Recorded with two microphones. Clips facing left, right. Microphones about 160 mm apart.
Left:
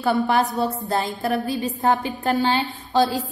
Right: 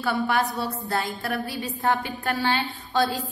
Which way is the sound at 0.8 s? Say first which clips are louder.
Left 4 dB; 20° left (ahead or behind).